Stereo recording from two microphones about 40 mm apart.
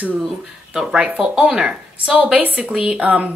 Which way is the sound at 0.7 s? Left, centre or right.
Right.